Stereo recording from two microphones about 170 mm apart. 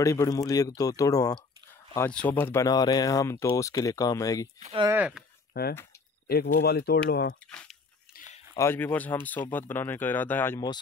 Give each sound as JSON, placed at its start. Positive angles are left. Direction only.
{"t": 0.0, "sound": "speech", "side_deg": 20}
{"t": 2.0, "sound": "speech", "side_deg": 10}
{"t": 4.9, "sound": "speech", "side_deg": -5}
{"t": 5.5, "sound": "speech", "side_deg": 65}
{"t": 7.4, "sound": "speech", "side_deg": 5}